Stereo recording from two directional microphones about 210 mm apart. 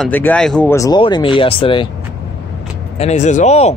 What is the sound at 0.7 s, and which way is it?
Speech, 20° left (ahead or behind).